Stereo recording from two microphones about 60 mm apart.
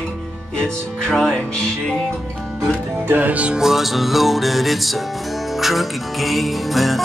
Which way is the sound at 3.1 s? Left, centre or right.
Right.